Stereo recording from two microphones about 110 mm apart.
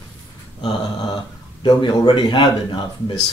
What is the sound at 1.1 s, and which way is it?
A man's voice, 40° left (ahead or behind).